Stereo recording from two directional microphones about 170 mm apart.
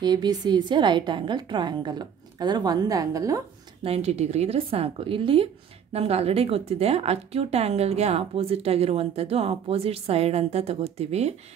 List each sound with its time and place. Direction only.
0.0 s a woman's voice: 25° right (ahead or behind)
3.8 s speech: 35° right (ahead or behind)